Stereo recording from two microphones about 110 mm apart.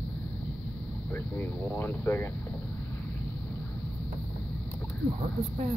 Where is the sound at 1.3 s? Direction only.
20° left (ahead or behind).